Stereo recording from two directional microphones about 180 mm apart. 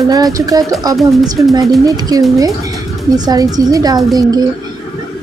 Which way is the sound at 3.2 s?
20° right (ahead or behind).